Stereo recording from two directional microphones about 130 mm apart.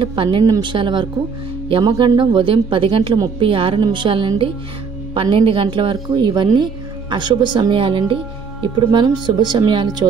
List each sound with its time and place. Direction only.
0.0 s speech: 40° right (ahead or behind)